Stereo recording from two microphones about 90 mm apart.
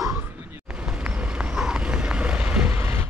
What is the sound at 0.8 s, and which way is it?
Vehicle, 10° right (ahead or behind).